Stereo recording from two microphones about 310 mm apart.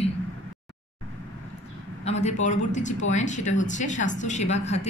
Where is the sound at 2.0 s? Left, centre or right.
Left.